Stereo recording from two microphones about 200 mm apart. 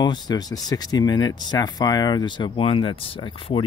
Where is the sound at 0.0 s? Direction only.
20° left (ahead or behind).